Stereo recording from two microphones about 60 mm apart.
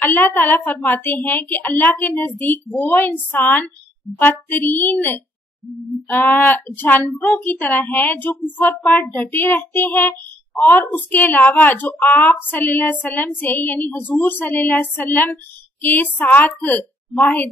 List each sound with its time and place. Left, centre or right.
0.0 s a child's voice: left
6.0 s a child's voice: left